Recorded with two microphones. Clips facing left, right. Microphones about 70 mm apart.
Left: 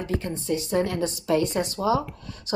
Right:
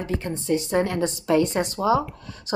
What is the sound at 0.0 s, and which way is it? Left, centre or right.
Speech, right.